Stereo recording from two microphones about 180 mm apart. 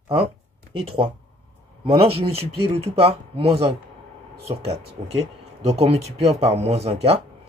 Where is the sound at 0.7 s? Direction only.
30° right (ahead or behind).